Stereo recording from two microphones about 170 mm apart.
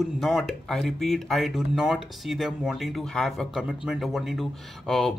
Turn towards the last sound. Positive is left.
turn(degrees=0)  # may be behind; listen again after turning